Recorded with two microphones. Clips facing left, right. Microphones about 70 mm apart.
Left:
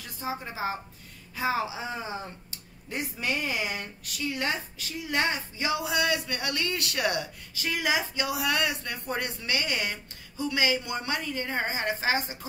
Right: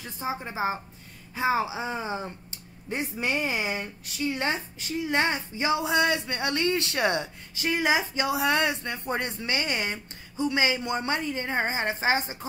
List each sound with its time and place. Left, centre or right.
0.0 s speech: right